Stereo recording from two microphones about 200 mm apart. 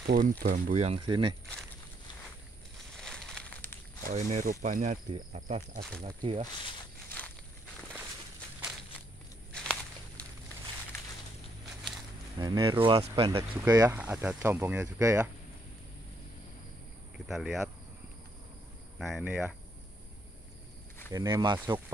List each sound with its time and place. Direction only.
0.0 s speech: 50° right (ahead or behind)
0.7 s speech: 30° right (ahead or behind)
3.0 s a sound: 5° left (ahead or behind)
4.0 s speech: 40° right (ahead or behind)
9.5 s walk: 5° left (ahead or behind)
12.4 s speech: 20° right (ahead or behind)
17.3 s speech: centre (ahead or behind)
18.9 s speech: centre (ahead or behind)
21.1 s speech: 15° right (ahead or behind)